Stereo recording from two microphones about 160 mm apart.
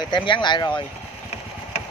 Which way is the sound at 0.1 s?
30° left (ahead or behind).